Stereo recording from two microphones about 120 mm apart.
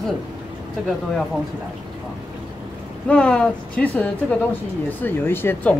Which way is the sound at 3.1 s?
10° left (ahead or behind).